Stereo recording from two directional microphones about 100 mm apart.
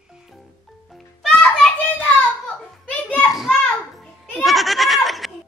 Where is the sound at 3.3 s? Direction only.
Centre (ahead or behind).